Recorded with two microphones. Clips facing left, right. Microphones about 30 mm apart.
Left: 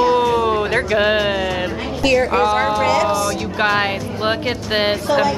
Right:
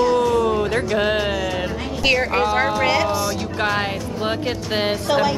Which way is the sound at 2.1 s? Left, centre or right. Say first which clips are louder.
Left 3 dB; centre.